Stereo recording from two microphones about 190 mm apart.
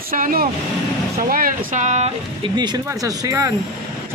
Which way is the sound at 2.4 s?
20° right (ahead or behind).